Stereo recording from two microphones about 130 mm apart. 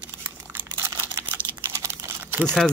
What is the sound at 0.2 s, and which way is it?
Crumpling, 15° right (ahead or behind).